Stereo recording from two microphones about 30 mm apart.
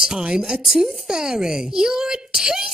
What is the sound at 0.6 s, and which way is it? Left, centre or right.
Speech, centre.